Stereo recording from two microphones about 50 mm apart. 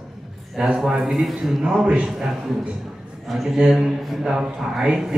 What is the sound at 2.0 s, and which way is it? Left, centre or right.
Speech, centre.